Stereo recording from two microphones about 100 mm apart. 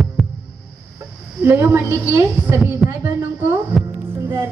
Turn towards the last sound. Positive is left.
turn(degrees=-25)  # may be behind; listen again after turning